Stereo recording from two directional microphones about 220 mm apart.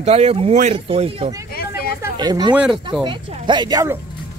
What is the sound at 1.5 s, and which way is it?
Vehicle, 45° left (ahead or behind).